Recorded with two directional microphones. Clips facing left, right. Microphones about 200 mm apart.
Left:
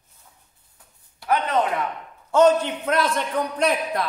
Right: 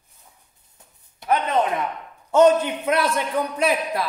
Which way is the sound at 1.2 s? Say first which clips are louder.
Right 1 dB; 20° right (ahead or behind).